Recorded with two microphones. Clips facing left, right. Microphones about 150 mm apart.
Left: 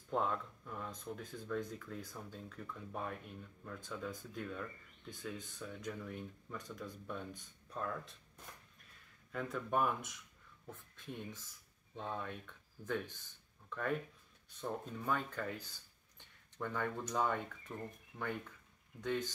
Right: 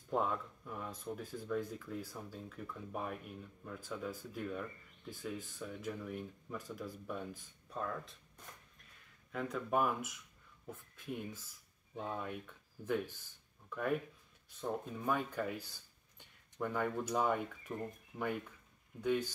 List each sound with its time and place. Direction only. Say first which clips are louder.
0.1 s speech: right 1 dB; 5° right (ahead or behind)
9.3 s speech: right 2 dB; 5° right (ahead or behind)